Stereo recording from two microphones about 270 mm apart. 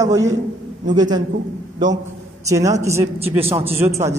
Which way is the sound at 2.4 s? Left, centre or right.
Centre.